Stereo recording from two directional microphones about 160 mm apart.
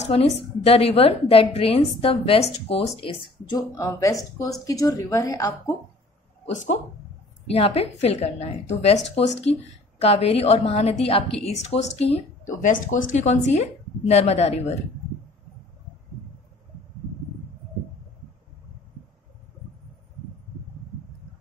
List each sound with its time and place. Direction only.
0.1 s a woman's voice: 40° left (ahead or behind)
3.5 s speech: 20° left (ahead or behind)
7.4 s a woman's voice: 40° left (ahead or behind)
12.6 s speech: 55° left (ahead or behind)